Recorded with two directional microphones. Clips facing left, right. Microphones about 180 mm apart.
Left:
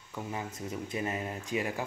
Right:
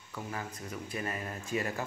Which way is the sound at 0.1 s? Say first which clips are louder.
Left 2 dB; 15° left (ahead or behind).